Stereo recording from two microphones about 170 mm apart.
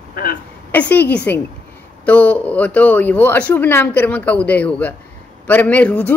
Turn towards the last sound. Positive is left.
turn(degrees=10)  # may be behind; listen again after turning